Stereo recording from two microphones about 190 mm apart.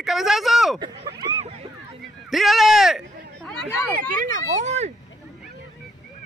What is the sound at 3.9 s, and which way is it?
Speech, 45° right (ahead or behind).